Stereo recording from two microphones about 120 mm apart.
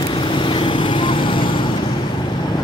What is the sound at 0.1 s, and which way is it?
Vehicle, 45° left (ahead or behind).